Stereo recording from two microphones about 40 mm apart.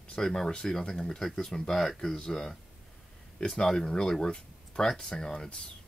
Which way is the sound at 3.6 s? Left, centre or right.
Centre.